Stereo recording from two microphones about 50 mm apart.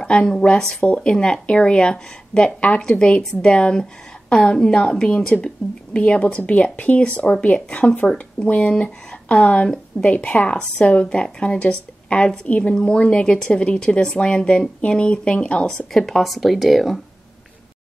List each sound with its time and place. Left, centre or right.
0.0 s speech: centre
15.9 s speech: centre